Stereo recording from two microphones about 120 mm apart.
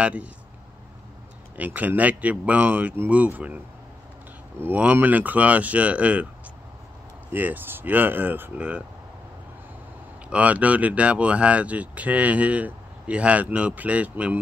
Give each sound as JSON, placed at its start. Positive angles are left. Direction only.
{"t": 0.0, "sound": "speech", "side_deg": -10}
{"t": 1.6, "sound": "speech", "side_deg": -15}
{"t": 7.3, "sound": "speech", "side_deg": -15}
{"t": 10.3, "sound": "speech", "side_deg": -10}